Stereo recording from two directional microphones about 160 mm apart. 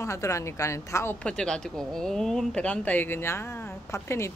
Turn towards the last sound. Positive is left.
turn(degrees=15)  # may be behind; listen again after turning